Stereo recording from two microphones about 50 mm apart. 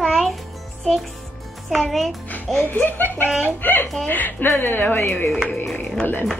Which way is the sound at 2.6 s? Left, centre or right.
Left.